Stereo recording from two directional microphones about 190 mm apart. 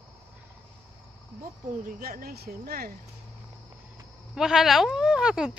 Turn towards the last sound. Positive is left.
turn(degrees=-5)  # may be behind; listen again after turning